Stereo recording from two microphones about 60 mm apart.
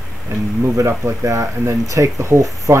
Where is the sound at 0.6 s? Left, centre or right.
Right.